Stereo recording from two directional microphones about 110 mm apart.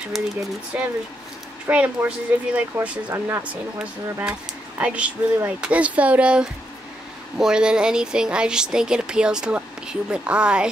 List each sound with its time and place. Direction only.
0.7 s speech: 15° right (ahead or behind)
3.1 s speech: 25° right (ahead or behind)
3.8 s speech: 10° right (ahead or behind)